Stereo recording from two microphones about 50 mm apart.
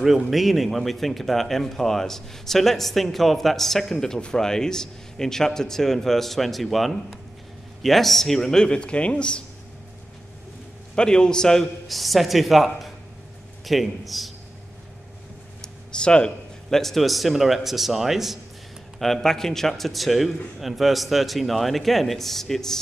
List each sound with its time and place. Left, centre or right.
0.0 s a man's voice: centre; by 9.4 s left
11.0 s a man's voice: centre
11.9 s speech: centre
15.6 s a sound: centre
16.7 s speech: centre
18.9 s speech: centre